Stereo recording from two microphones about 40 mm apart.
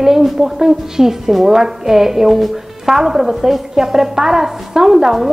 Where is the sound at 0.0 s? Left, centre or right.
Centre.